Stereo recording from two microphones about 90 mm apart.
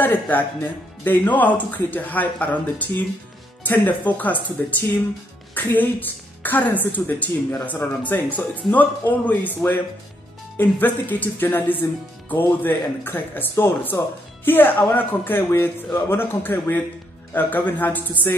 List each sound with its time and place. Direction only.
0.0 s speech: 20° left (ahead or behind)
10.6 s speech: 20° left (ahead or behind)